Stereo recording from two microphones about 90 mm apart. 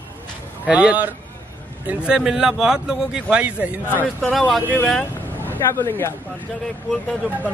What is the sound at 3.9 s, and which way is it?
Speech, 20° left (ahead or behind).